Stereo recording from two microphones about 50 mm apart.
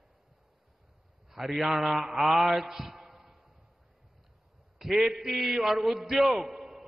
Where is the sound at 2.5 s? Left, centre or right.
Centre.